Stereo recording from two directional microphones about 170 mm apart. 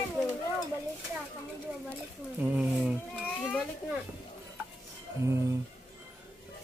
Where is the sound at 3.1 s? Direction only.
5° left (ahead or behind).